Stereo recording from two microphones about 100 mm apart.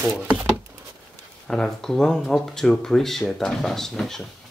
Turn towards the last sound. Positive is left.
turn(degrees=5)  # may be behind; listen again after turning